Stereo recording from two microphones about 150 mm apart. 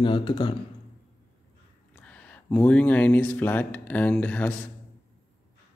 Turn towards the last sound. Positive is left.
turn(degrees=10)  # may be behind; listen again after turning